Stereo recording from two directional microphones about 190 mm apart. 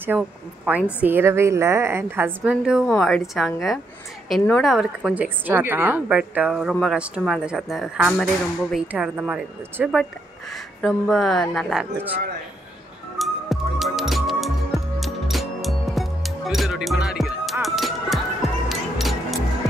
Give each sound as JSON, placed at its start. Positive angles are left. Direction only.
{"t": 0.1, "sound": "a woman's voice", "side_deg": -15}
{"t": 13.2, "sound": "music", "side_deg": 0}